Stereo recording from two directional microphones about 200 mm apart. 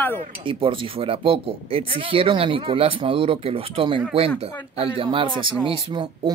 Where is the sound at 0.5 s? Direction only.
25° right (ahead or behind).